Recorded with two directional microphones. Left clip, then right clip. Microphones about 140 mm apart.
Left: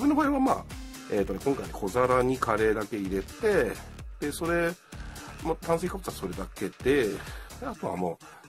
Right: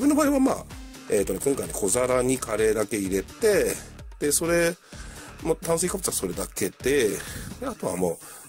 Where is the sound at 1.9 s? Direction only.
25° right (ahead or behind).